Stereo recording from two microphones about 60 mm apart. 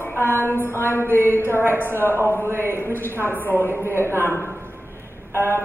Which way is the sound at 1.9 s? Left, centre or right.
Left.